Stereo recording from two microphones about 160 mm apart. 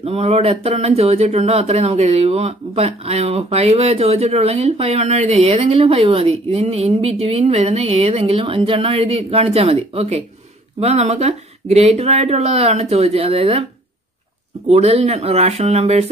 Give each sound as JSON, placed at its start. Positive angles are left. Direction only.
{"t": 0.0, "sound": "speech", "side_deg": -40}
{"t": 14.7, "sound": "speech", "side_deg": -40}